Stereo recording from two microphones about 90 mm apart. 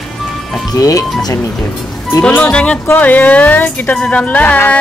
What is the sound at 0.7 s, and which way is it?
Speech, 40° left (ahead or behind).